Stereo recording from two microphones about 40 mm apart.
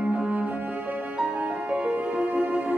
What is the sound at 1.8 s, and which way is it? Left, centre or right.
Music, right.